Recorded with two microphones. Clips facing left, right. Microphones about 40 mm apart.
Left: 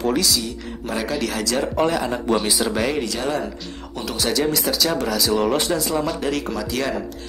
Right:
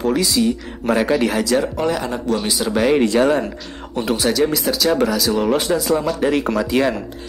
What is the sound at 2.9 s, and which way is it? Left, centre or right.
Speech, right.